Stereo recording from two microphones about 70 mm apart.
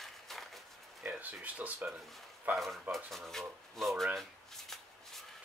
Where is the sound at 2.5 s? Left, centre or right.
Centre.